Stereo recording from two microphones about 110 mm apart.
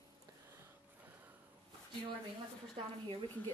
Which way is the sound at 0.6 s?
20° right (ahead or behind).